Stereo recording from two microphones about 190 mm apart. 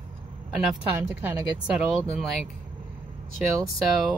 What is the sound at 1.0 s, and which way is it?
Speech, 20° right (ahead or behind).